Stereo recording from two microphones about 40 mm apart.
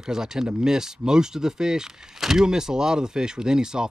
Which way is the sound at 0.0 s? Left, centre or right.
Centre.